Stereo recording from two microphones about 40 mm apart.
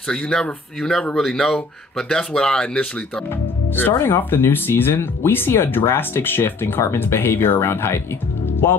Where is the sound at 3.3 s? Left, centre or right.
Left.